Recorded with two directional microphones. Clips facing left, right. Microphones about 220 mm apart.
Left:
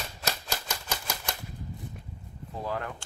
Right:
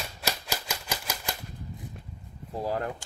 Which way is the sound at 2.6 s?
35° right (ahead or behind).